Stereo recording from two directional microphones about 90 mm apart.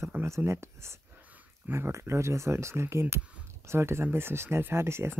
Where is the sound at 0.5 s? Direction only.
30° right (ahead or behind).